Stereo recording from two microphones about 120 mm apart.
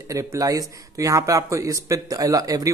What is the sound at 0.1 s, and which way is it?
Speech, 25° right (ahead or behind).